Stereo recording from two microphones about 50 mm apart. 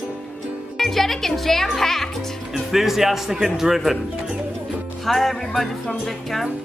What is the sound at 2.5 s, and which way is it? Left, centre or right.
A man's voice, centre.